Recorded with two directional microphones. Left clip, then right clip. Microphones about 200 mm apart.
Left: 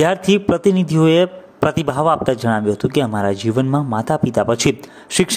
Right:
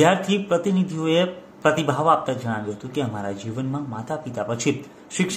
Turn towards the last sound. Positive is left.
turn(degrees=45)  # may be behind; listen again after turning